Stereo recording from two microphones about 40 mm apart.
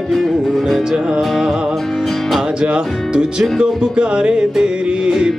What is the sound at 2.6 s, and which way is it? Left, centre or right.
Music, right.